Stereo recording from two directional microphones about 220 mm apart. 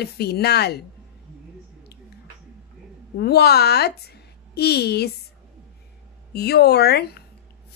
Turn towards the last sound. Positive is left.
turn(degrees=45)  # may be behind; listen again after turning